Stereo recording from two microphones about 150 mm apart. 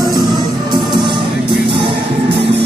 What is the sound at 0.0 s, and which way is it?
Music, 25° right (ahead or behind).